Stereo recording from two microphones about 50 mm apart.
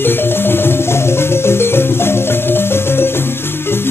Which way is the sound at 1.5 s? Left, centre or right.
Left.